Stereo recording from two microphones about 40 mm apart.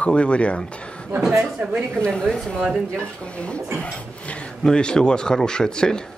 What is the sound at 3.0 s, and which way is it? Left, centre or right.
A man's voice, left.